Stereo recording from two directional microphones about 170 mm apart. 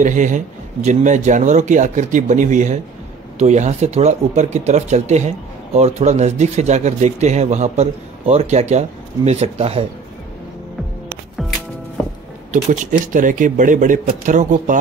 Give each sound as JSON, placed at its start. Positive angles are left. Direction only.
{"t": 0.0, "sound": "speech", "side_deg": -50}
{"t": 12.7, "sound": "speech", "side_deg": -50}